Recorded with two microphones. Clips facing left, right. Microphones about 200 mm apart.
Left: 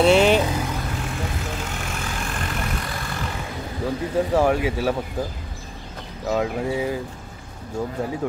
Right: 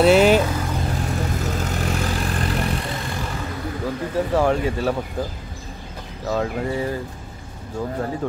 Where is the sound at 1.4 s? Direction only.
40° right (ahead or behind).